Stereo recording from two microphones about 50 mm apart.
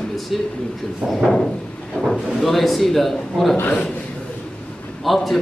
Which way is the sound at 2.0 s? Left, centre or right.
Centre.